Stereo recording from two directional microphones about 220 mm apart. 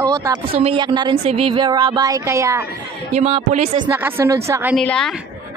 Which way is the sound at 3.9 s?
10° right (ahead or behind).